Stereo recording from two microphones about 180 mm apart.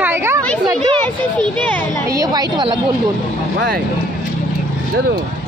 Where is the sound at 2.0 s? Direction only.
20° right (ahead or behind).